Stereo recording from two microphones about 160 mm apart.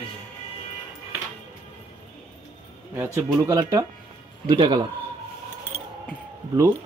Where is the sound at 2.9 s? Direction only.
20° right (ahead or behind).